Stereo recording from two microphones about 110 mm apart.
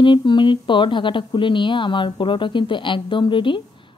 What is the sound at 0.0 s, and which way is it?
Speech, 45° left (ahead or behind).